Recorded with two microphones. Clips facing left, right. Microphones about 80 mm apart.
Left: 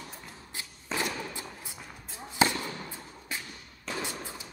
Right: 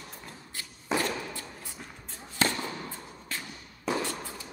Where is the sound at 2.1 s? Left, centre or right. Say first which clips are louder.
Left 3 dB; centre.